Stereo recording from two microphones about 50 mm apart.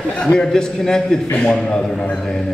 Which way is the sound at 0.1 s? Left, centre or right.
Left.